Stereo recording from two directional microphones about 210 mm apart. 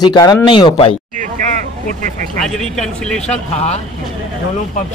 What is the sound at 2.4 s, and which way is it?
Speech, centre (ahead or behind).